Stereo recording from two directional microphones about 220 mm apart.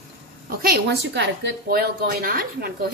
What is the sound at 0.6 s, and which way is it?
A woman's voice, 45° right (ahead or behind).